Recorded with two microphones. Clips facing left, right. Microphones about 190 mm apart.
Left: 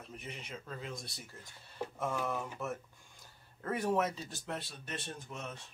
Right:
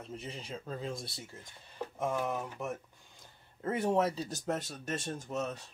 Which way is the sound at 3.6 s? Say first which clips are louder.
Right 3 dB; 25° right (ahead or behind).